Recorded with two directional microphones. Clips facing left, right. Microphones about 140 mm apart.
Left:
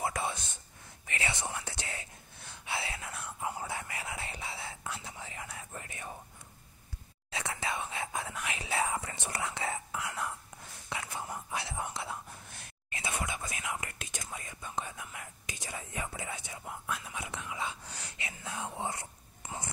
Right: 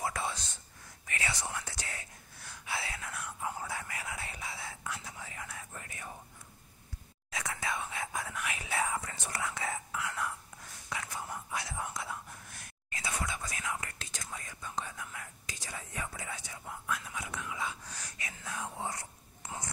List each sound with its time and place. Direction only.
0.0 s whispering: 20° left (ahead or behind)
7.2 s whispering: 30° left (ahead or behind)